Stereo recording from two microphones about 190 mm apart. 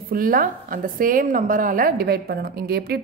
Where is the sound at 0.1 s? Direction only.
50° right (ahead or behind).